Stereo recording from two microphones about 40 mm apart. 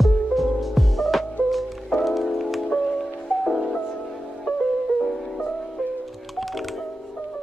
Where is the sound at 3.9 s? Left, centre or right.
Centre.